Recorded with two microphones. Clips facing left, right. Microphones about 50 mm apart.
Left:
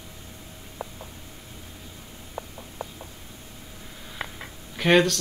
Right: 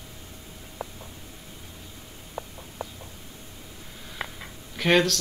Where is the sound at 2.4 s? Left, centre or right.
Centre.